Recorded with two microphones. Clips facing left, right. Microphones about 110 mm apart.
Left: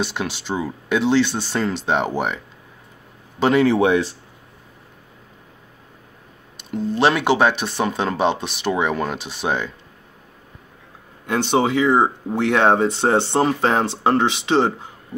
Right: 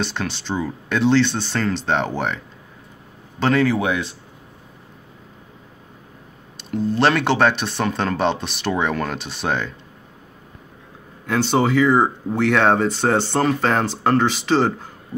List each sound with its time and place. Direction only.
0.0 s a man's voice: 10° left (ahead or behind)
3.6 s speech: 25° left (ahead or behind)
6.5 s speech: centre (ahead or behind)
11.2 s speech: 15° left (ahead or behind)
11.8 s speech: centre (ahead or behind)
12.4 s speech: 15° left (ahead or behind)